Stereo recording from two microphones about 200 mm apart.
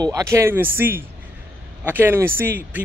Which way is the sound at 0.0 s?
15° right (ahead or behind).